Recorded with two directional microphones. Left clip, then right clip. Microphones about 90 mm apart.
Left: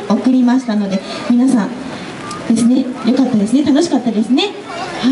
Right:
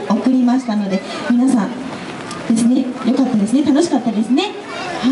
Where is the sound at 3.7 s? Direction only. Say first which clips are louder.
Left 1 dB; 20° left (ahead or behind).